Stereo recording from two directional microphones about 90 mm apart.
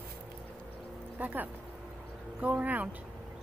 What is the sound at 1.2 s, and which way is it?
Speech, 15° right (ahead or behind).